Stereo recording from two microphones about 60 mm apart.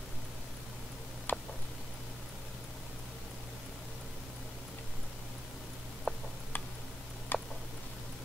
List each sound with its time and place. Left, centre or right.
1.3 s tick: left
6.1 s tick-tock: centre
7.3 s tick-tock: left